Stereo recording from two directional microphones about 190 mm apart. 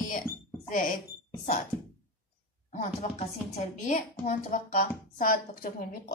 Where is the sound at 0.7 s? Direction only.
45° left (ahead or behind).